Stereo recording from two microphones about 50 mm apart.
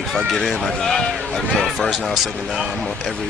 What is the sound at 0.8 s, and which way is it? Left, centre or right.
Speech, centre.